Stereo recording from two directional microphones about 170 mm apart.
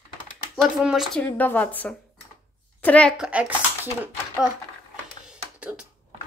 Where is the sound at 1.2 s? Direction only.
10° left (ahead or behind).